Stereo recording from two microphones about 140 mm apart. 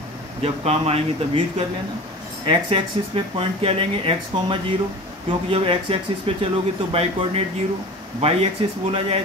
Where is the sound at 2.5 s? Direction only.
40° right (ahead or behind).